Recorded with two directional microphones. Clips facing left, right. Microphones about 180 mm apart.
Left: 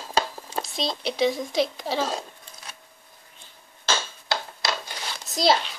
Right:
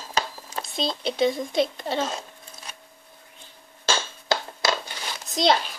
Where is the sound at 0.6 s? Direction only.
Centre (ahead or behind).